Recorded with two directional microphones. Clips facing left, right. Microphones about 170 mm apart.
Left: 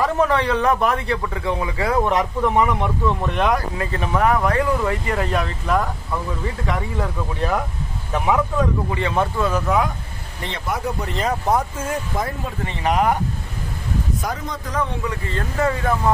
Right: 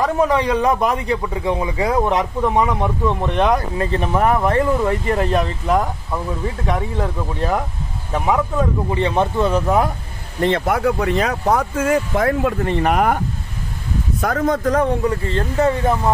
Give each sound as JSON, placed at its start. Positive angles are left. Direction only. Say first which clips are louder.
{"t": 0.2, "sound": "a man's voice", "louder": "right 3 dB", "side_deg": -15}
{"t": 8.9, "sound": "a man's voice", "louder": "right 6 dB", "side_deg": -20}
{"t": 10.4, "sound": "speech", "louder": "right 9 dB", "side_deg": -55}
{"t": 14.2, "sound": "speech", "louder": "right 10 dB", "side_deg": -55}